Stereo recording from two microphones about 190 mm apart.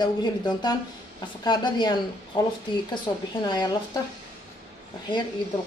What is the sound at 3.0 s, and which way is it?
A woman's voice, 25° left (ahead or behind).